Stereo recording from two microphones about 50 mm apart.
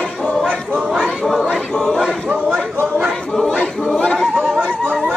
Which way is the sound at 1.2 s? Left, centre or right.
Centre.